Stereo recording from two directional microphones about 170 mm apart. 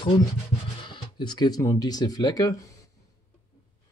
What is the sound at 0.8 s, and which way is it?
Speech, 25° left (ahead or behind).